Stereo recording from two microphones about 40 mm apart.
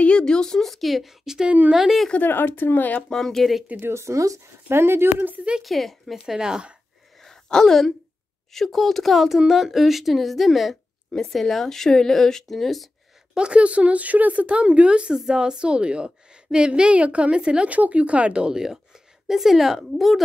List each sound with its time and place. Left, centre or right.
0.2 s a woman's voice: centre
2.2 s speech: left
3.1 s a woman's voice: centre
3.7 s speech: right
4.1 s speech: right
5.6 s a woman's voice: centre
6.4 s a woman's voice: centre
7.4 s a woman's voice: centre
13.4 s speech: right
14.5 s a woman's voice: right
19.2 s a woman's voice: centre